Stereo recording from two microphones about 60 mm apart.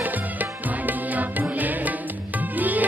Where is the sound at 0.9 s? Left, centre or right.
Right.